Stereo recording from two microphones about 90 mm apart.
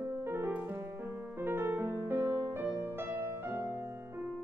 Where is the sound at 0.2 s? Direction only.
25° right (ahead or behind).